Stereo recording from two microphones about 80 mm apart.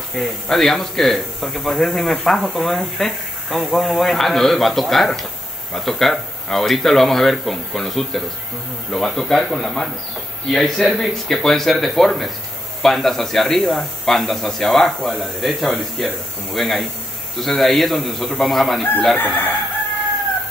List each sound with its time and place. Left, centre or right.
0.1 s speech: centre
19.1 s chicken: left